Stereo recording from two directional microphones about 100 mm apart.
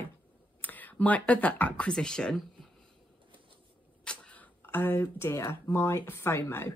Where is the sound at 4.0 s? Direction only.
10° left (ahead or behind).